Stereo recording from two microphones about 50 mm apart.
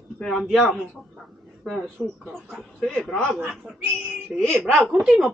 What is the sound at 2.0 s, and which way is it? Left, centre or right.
A man's voice, centre.